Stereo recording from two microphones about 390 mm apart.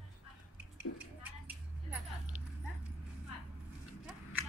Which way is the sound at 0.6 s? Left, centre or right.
Centre.